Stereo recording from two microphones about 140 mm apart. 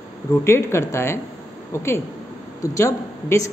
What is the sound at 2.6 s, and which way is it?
Speech, 20° left (ahead or behind).